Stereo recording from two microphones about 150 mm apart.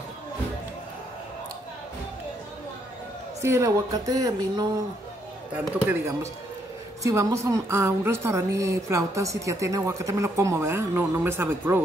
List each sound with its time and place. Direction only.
3.3 s a woman's voice: 20° right (ahead or behind)
5.9 s a woman's voice: 15° right (ahead or behind)